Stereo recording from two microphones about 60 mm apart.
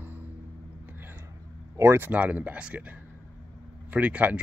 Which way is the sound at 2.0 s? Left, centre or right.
Right.